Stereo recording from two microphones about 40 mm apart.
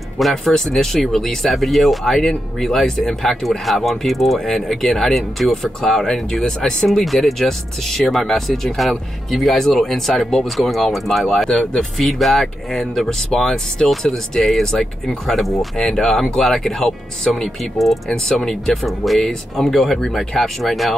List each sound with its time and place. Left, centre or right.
0.2 s speech: centre
6.9 s speech: centre
15.8 s speech: centre
17.7 s speech: centre